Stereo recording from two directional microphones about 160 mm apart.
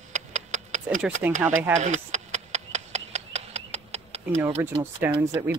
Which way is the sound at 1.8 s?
45° right (ahead or behind).